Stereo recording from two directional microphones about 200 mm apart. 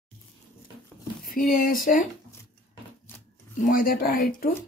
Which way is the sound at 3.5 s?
45° left (ahead or behind).